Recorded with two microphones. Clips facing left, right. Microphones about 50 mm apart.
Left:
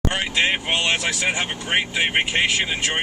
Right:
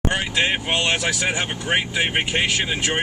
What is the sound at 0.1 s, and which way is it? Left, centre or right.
Speech, centre.